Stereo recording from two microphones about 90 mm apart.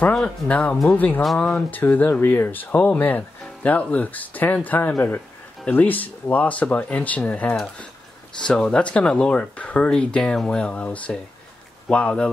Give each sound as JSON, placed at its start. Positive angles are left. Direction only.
{"t": 0.1, "sound": "speech", "side_deg": 10}
{"t": 1.2, "sound": "speech", "side_deg": 5}
{"t": 1.8, "sound": "speech", "side_deg": 20}